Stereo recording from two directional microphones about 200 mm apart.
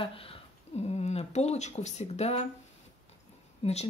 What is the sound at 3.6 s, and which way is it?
Speech, 30° left (ahead or behind).